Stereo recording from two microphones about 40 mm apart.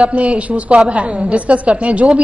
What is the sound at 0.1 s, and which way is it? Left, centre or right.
A woman's voice, right.